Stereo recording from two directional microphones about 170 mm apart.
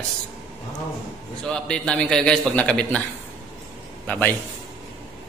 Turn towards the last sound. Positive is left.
turn(degrees=10)  # may be behind; listen again after turning